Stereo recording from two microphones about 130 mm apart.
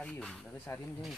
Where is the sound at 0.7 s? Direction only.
20° left (ahead or behind).